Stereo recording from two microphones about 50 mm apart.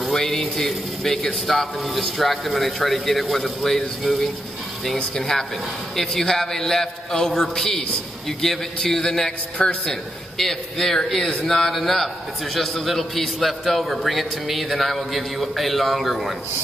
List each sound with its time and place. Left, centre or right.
0.0 s a man's voice: centre
10.3 s a man's voice: centre